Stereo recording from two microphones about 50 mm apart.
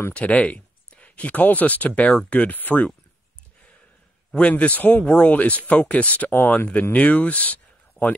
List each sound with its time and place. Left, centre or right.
0.1 s speech: left
4.3 s a man's voice: left
5.0 s speech: centre
5.3 s speech: left
8.0 s a sound: centre